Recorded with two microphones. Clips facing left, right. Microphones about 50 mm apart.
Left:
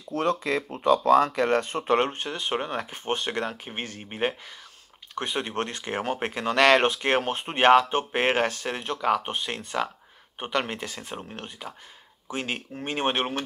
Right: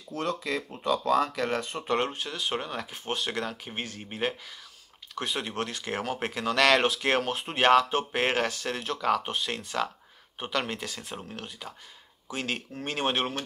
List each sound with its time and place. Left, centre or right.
0.1 s speech: centre
2.3 s speech: left
4.0 s speech: centre
5.6 s speech: left; by 11.2 s centre
11.2 s speech: left
12.3 s speech: centre